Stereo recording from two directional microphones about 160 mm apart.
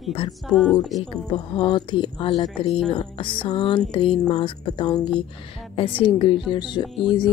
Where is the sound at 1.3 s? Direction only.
30° left (ahead or behind).